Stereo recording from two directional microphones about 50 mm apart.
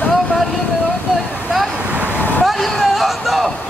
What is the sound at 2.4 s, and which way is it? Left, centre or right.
Speech, centre.